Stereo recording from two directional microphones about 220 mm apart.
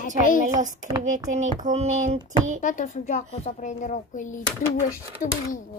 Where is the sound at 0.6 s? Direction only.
35° right (ahead or behind).